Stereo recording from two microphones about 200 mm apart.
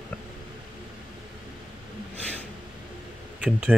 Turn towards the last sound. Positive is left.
turn(degrees=-5)  # may be behind; listen again after turning